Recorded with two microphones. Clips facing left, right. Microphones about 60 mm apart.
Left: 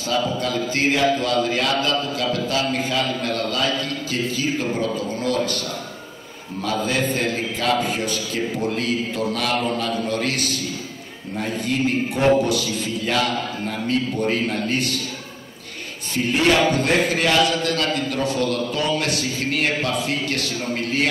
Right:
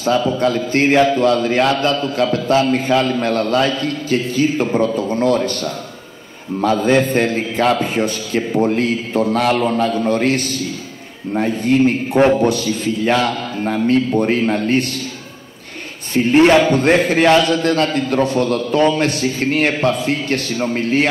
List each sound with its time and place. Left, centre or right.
0.2 s mantra: right
16.1 s mantra: right